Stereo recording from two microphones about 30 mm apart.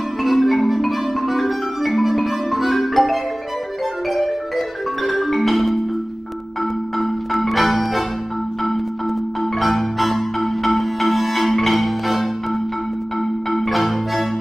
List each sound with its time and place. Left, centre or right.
0.2 s marimba: centre
4.1 s music: centre
6.6 s marimba: centre
9.4 s marimba: centre